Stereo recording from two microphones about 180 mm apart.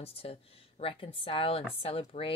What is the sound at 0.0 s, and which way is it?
Speech, 30° left (ahead or behind).